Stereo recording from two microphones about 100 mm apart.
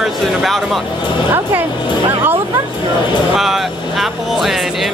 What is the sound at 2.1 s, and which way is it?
Speech, 20° right (ahead or behind).